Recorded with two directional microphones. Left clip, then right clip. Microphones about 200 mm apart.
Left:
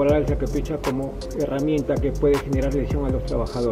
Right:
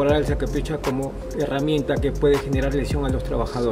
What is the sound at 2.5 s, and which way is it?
Speech, centre (ahead or behind).